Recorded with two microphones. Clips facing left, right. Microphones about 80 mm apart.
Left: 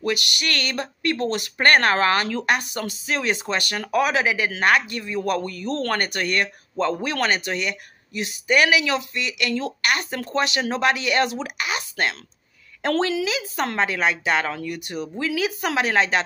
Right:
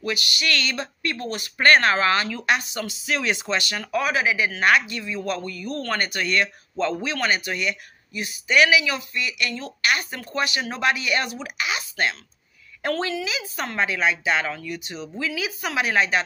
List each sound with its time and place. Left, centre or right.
0.0 s speech: left
3.9 s speech: left
4.6 s speech: left
5.9 s speech: left
6.8 s speech: left
7.2 s speech: left
8.5 s speech: left
10.7 s speech: left
11.4 s speech: left
12.8 s speech: left
13.7 s speech: left